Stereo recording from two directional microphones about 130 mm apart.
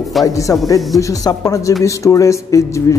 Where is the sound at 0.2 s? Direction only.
25° left (ahead or behind).